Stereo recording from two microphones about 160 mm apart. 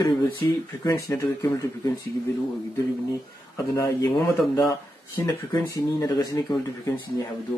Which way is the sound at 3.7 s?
20° left (ahead or behind).